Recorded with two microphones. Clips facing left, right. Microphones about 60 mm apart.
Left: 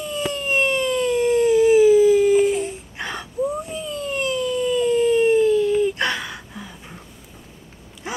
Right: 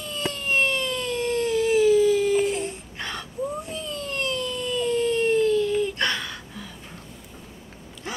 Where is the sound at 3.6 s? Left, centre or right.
Centre.